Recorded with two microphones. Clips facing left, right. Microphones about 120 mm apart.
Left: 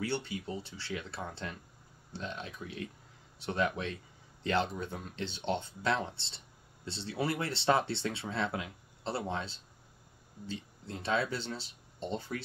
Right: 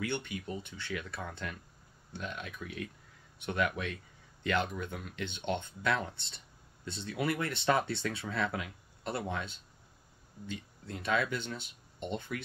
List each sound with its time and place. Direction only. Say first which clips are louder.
0.0 s speech: left 1 dB; 30° left (ahead or behind)